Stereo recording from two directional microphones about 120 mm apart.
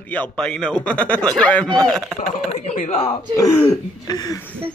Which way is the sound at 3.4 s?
25° left (ahead or behind).